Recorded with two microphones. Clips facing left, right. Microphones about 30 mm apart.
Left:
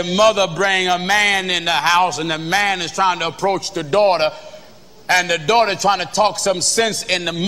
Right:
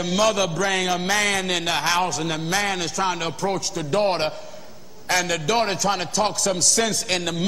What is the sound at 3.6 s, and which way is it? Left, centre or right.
Speech, left.